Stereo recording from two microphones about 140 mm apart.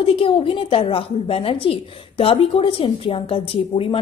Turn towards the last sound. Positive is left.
turn(degrees=40)  # may be behind; listen again after turning